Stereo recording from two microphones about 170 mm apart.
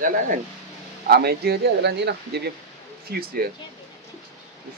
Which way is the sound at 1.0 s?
70° right (ahead or behind).